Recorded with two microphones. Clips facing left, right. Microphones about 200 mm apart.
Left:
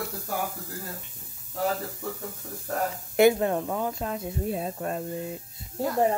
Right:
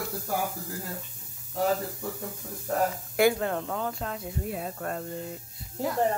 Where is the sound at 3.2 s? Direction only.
20° left (ahead or behind).